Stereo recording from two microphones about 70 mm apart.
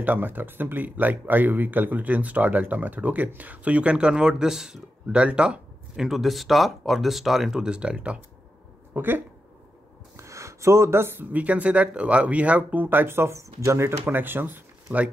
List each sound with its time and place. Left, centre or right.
0.0 s speech: right
8.9 s speech: right
10.1 s a sound: right
11.3 s speech: right